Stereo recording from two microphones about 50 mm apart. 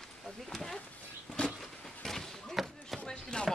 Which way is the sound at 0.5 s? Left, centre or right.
Centre.